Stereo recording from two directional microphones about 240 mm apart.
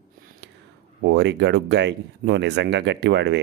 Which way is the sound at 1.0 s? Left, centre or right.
Right.